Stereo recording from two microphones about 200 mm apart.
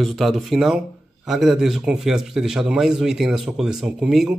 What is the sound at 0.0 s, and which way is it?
A man's voice, centre (ahead or behind).